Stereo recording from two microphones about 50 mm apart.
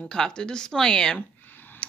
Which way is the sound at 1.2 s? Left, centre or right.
Left.